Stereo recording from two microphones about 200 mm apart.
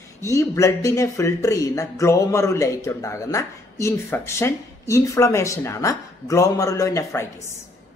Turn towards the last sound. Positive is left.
turn(degrees=15)  # may be behind; listen again after turning